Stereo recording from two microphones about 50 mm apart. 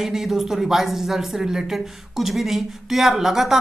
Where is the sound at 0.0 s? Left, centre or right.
Centre.